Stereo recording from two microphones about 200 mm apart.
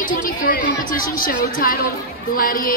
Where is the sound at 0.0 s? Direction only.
45° left (ahead or behind).